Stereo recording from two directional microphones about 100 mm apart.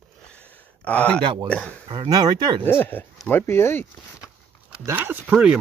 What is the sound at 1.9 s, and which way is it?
Speech, 40° right (ahead or behind).